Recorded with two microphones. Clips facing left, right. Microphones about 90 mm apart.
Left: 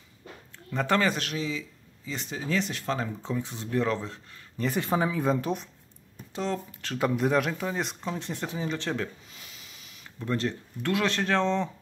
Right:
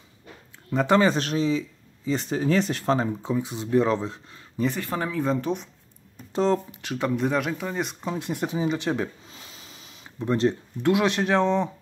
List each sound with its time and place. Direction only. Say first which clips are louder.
0.7 s speech: right 5 dB; 20° right (ahead or behind); by 3.1 s 35° right (ahead or behind)
3.2 s speech: right 5 dB; 15° right (ahead or behind)
4.7 s speech: left 1 dB; 10° left (ahead or behind)
6.3 s speech: right 8 dB; 35° right (ahead or behind)
6.7 s speech: right 3 dB; 15° right (ahead or behind)
7.0 s speech: even; centre (ahead or behind)
8.0 s speech: right 5 dB; 10° right (ahead or behind)